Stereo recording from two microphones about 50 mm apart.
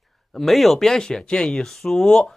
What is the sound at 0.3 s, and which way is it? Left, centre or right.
Speech, centre.